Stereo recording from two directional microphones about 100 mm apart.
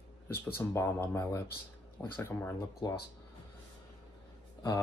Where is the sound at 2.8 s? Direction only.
40° left (ahead or behind).